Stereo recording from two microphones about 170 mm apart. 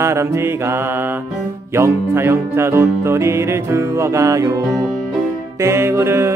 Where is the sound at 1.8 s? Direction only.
15° right (ahead or behind).